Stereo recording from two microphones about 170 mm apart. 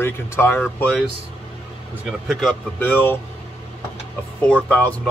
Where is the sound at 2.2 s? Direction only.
Centre (ahead or behind).